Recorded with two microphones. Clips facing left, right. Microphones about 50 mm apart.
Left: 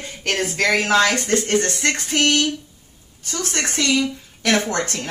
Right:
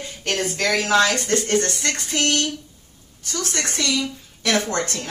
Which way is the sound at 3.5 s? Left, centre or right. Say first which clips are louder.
Left 4 dB; left.